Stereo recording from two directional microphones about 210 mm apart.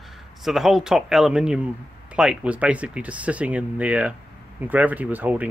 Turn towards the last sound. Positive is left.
turn(degrees=-10)  # may be behind; listen again after turning